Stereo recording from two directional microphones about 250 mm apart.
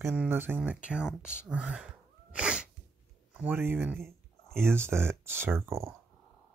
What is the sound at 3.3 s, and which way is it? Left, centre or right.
Speech, centre.